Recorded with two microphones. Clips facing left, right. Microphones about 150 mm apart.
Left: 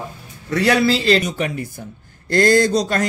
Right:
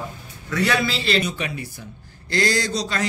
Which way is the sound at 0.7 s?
40° left (ahead or behind).